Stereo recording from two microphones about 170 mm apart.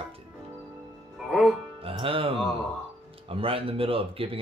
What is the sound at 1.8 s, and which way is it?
Speech, 35° right (ahead or behind).